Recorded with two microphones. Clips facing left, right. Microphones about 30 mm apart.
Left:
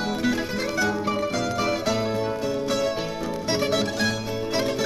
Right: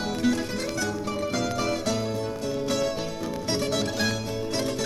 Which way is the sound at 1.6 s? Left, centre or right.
Centre.